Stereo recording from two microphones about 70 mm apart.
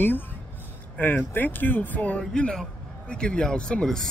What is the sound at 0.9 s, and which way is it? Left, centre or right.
Speech, left.